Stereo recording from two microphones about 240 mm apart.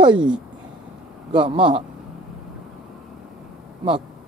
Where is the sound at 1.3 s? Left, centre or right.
Right.